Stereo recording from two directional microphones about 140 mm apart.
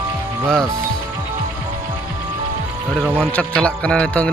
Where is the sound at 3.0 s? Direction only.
10° right (ahead or behind).